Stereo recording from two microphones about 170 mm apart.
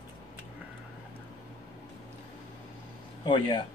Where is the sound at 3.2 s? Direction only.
30° left (ahead or behind).